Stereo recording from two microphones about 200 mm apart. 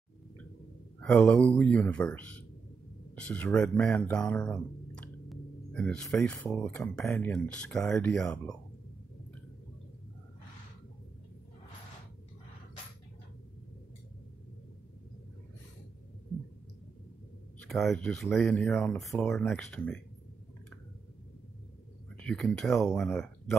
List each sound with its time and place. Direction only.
1.0 s speech: 5° left (ahead or behind)
17.6 s speech: centre (ahead or behind)
22.1 s speech: 5° left (ahead or behind)